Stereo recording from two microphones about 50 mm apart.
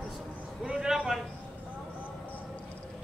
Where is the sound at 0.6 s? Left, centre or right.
Centre.